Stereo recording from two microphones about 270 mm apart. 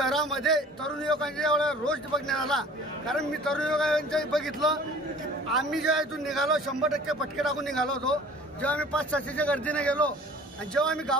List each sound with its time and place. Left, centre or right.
0.0 s a man's voice: centre